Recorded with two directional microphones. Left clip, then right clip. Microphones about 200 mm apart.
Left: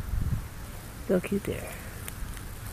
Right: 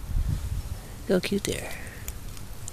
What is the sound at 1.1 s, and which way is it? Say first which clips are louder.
Speech: right 2 dB; 20° right (ahead or behind).